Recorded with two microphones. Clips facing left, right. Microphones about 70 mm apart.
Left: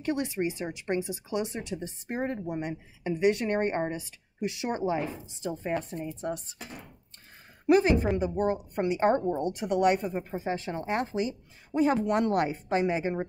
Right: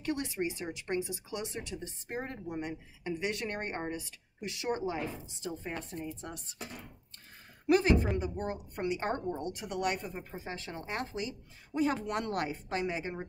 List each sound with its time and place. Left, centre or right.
0.0 s speech: left
7.7 s speech: left